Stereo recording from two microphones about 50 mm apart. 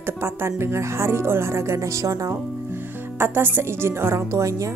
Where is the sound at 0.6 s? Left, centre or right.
Right.